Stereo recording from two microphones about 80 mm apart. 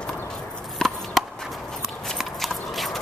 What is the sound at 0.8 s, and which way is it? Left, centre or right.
Chop, centre.